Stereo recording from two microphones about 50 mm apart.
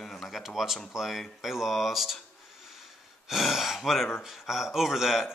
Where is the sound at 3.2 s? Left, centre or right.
Centre.